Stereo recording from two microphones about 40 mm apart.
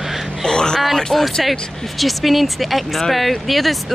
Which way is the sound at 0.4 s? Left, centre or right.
Centre.